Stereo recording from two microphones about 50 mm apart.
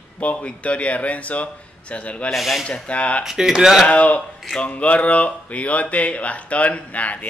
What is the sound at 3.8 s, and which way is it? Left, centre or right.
Speech, left.